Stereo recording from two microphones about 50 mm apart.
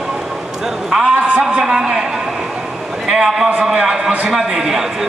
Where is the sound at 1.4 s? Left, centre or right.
Centre.